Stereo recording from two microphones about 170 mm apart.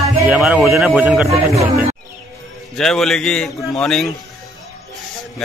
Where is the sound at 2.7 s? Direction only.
Centre (ahead or behind).